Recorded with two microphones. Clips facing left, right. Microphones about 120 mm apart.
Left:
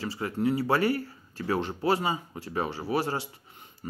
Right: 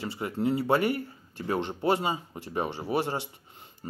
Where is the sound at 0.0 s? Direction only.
25° right (ahead or behind).